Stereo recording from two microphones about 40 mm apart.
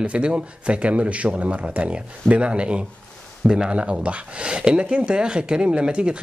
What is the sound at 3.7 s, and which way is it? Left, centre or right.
Speech, right.